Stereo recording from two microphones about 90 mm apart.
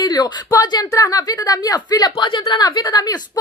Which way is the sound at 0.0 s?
50° left (ahead or behind).